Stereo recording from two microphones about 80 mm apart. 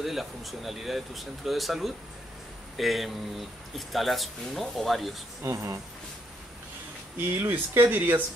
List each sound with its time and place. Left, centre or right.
0.0 s speech: centre
5.4 s speech: right
7.4 s speech: right